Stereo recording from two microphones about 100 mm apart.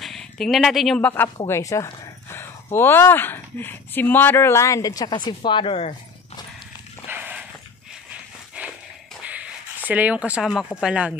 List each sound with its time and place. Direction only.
0.0 s a sound: 5° left (ahead or behind)
0.9 s speech: 15° left (ahead or behind)
1.5 s speech: 30° left (ahead or behind); by 5.8 s 55° left (ahead or behind)
7.1 s a sound: 15° right (ahead or behind)
9.2 s shuffle: 15° right (ahead or behind)
9.8 s speech: 15° right (ahead or behind)